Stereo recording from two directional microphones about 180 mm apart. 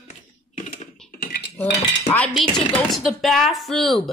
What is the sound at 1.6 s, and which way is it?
Cutlery, 5° left (ahead or behind).